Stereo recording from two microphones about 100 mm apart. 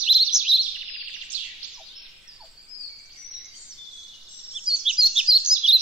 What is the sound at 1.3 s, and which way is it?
Bird, 15° right (ahead or behind).